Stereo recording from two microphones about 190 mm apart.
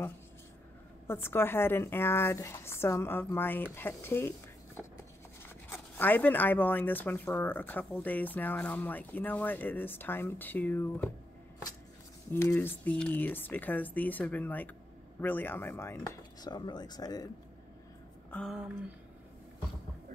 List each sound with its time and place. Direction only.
1.0 s speech: 10° left (ahead or behind)
5.7 s speech: 10° left (ahead or behind)
12.3 s speech: 10° left (ahead or behind)
18.3 s speech: centre (ahead or behind)